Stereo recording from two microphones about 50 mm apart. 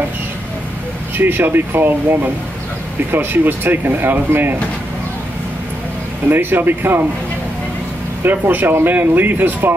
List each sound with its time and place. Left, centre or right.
1.1 s speech: right
6.3 s speech: right
8.2 s speech: right